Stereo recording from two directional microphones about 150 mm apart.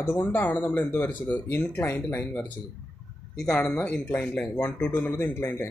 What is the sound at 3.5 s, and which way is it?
Speech, 10° left (ahead or behind).